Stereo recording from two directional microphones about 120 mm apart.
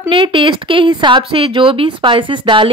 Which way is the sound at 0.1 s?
45° right (ahead or behind).